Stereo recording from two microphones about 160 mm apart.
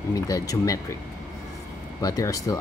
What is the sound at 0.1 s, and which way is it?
Speech, 20° left (ahead or behind).